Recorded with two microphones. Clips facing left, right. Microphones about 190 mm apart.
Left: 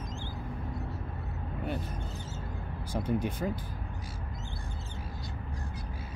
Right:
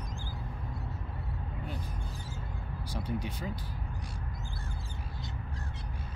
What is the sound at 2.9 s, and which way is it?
Speech, 50° left (ahead or behind).